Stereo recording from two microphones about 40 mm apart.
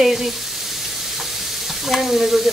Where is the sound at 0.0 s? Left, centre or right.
Centre.